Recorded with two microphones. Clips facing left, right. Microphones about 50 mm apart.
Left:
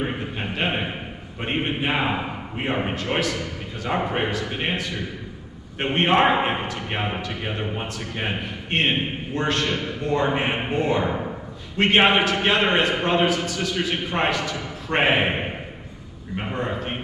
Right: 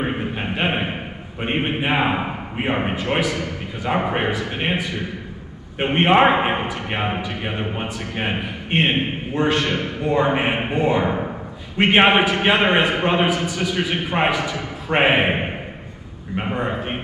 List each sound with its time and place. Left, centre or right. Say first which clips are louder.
0.0 s a sound: right 3 dB; right
1.4 s a man's voice: right 3 dB; right
9.3 s a man's voice: right 4 dB; right
16.4 s a man's voice: right 3 dB; right